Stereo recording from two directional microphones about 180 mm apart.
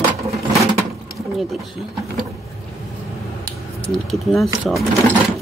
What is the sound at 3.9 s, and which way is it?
Speech, centre (ahead or behind).